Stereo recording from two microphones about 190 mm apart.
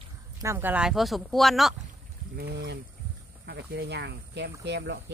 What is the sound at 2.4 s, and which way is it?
Speech, 60° right (ahead or behind).